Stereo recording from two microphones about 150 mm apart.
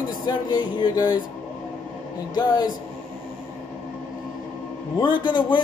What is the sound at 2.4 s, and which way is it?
Speech, 30° left (ahead or behind).